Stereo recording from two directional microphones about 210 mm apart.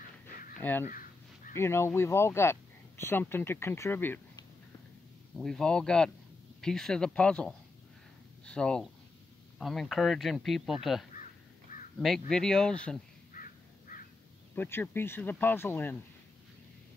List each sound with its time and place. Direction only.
0.6 s speech: 10° left (ahead or behind)
0.8 s crow: 40° left (ahead or behind)
1.5 s speech: 10° left (ahead or behind)
13.3 s crow: 40° left (ahead or behind)
14.5 s speech: 10° left (ahead or behind)